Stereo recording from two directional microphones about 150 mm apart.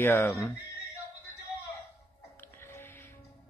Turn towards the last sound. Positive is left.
turn(degrees=15)  # may be behind; listen again after turning